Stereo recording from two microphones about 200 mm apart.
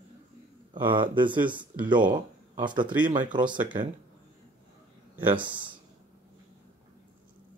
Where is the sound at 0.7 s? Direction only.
25° right (ahead or behind).